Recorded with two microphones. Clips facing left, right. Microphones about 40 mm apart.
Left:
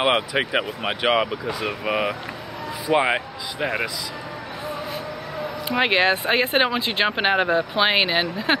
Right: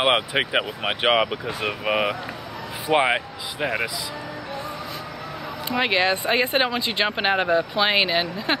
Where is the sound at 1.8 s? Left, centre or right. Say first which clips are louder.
Right 1 dB; right.